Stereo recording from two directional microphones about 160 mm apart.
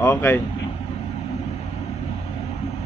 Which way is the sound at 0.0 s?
10° left (ahead or behind).